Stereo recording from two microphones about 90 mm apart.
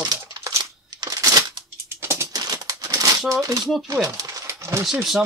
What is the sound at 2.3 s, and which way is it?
Typewriter, 45° right (ahead or behind).